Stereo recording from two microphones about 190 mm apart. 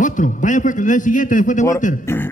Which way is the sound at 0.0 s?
40° left (ahead or behind).